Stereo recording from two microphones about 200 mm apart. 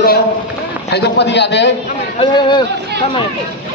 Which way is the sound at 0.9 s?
55° left (ahead or behind).